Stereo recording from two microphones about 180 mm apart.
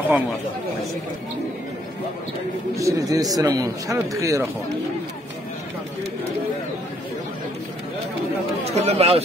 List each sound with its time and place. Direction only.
2.7 s a man's voice: 15° right (ahead or behind)
8.6 s speech: 35° right (ahead or behind)